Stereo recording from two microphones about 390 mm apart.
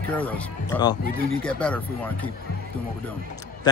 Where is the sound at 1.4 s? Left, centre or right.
Centre.